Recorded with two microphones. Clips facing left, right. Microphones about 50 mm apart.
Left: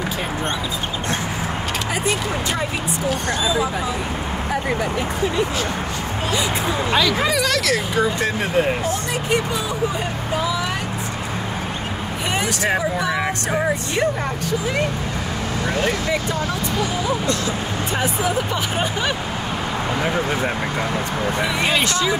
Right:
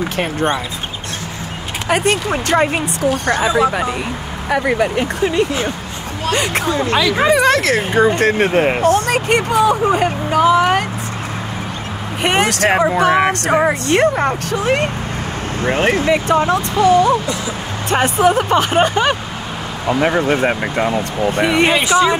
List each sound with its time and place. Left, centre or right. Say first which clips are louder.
1.9 s speech: right 9 dB; right
7.2 s speech: right 7 dB; right
12.2 s speech: right 8 dB; right
15.6 s speech: right 7 dB; right
16.3 s speech: right 8 dB; right
20.0 s speech: right 8 dB; right
21.4 s speech: right 9 dB; right
21.7 s speech: right 6 dB; centre